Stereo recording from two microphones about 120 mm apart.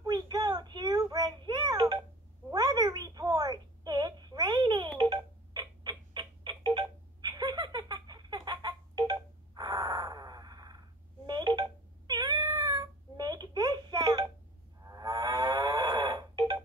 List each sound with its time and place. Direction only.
0.0 s child singing: 35° right (ahead or behind)
2.5 s a sound: 30° right (ahead or behind)
4.9 s music: 35° right (ahead or behind)
11.2 s telephone dialing: 35° right (ahead or behind)
12.1 s cat: 30° right (ahead or behind)
12.4 s a sound: 30° right (ahead or behind)
14.8 s livestock: 30° right (ahead or behind)